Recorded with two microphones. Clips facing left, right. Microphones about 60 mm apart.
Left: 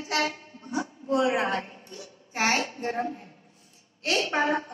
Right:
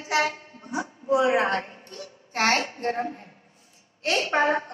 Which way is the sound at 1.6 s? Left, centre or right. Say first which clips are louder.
Right 2 dB; right.